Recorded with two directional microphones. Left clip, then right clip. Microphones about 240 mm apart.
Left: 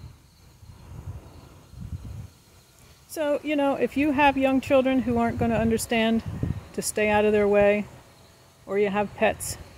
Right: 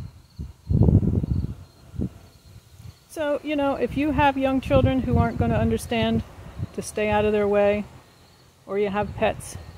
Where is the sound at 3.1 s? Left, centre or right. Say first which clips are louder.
Even; centre.